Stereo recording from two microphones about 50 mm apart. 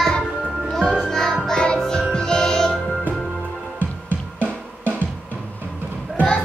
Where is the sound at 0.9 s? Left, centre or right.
Centre.